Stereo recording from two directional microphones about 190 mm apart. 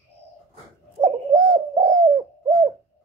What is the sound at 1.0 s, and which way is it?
Bird, 25° right (ahead or behind).